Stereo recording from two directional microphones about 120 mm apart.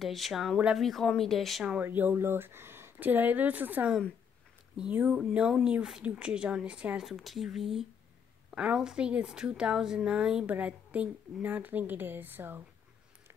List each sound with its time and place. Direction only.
0.0 s speech: centre (ahead or behind)
1.9 s speech: 15° right (ahead or behind)